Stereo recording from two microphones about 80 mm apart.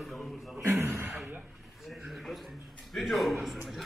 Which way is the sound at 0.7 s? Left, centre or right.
Right.